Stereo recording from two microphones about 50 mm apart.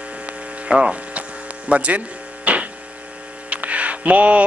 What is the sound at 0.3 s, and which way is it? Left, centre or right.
Hum, right.